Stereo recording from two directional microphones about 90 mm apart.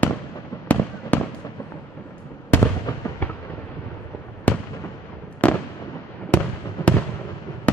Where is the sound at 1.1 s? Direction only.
20° left (ahead or behind).